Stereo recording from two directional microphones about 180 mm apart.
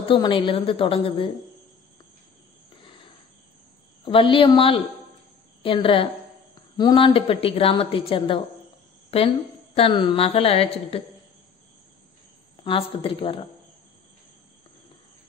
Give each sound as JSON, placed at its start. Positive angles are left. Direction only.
{"t": 0.1, "sound": "a woman's voice", "side_deg": 30}
{"t": 4.0, "sound": "a woman's voice", "side_deg": 30}
{"t": 12.6, "sound": "a woman's voice", "side_deg": 30}